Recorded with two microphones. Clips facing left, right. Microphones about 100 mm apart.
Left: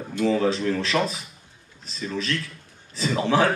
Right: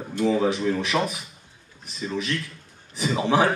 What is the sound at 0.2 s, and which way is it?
Speech, 15° right (ahead or behind).